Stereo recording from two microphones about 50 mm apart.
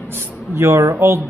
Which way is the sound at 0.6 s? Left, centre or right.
Right.